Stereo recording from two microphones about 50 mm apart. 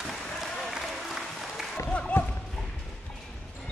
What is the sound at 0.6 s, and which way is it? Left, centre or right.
Applause, centre.